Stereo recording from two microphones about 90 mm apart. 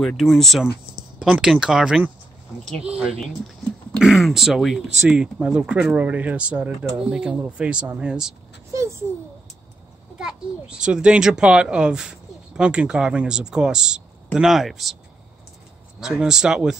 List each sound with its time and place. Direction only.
0.2 s a child's voice: centre (ahead or behind)
8.7 s a sound: 30° right (ahead or behind)
10.1 s a child's voice: 10° right (ahead or behind)
16.0 s a child's voice: 10° right (ahead or behind)